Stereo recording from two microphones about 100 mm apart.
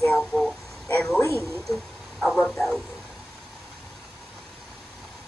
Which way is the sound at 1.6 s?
5° left (ahead or behind).